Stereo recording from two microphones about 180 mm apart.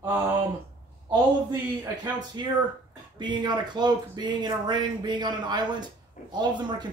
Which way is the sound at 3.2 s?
25° right (ahead or behind).